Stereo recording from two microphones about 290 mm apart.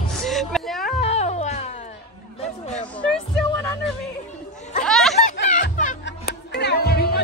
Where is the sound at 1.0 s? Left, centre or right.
Left.